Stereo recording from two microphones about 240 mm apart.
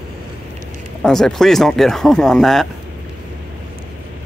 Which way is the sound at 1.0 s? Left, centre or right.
Centre.